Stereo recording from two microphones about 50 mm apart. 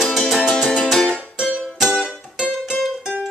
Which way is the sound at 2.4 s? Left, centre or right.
Centre.